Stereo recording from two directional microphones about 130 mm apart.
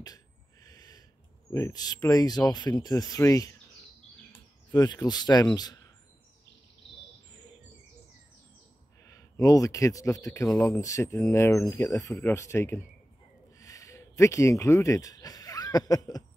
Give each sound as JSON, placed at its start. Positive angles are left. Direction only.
{"t": 0.0, "sound": "sneeze", "side_deg": 30}
{"t": 1.5, "sound": "speech", "side_deg": 25}
{"t": 4.7, "sound": "speech", "side_deg": 30}
{"t": 9.0, "sound": "speech", "side_deg": 25}
{"t": 13.6, "sound": "a sound", "side_deg": 25}